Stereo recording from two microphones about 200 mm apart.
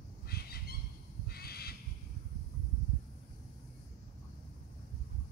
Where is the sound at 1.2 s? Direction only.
50° left (ahead or behind).